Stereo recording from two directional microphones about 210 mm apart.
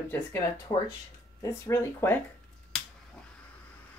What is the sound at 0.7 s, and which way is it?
Speech, 20° left (ahead or behind).